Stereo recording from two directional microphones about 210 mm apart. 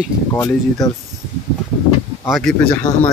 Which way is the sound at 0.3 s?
15° left (ahead or behind).